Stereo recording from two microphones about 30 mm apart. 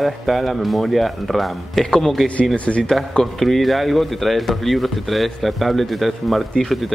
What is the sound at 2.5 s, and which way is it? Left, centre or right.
Speech, left.